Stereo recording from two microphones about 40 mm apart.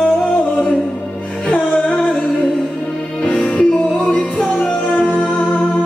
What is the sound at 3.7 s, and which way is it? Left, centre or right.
Music, left.